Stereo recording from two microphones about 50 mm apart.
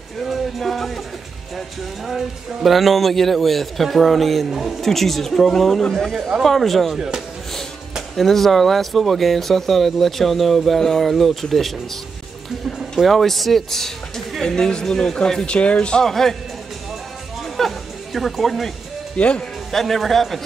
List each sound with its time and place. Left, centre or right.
0.2 s music: centre
2.0 s speech: centre
13.0 s speech: centre
15.4 s speech: left
16.0 s a man's voice: centre
17.6 s music: centre
19.1 s speech: left
19.7 s speech: centre